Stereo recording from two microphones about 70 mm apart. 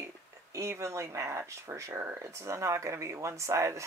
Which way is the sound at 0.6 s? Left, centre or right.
Right.